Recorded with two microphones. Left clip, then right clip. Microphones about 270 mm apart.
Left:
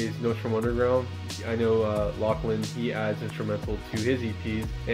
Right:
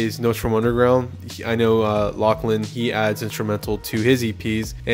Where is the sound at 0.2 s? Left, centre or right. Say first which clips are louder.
Right 7 dB; right.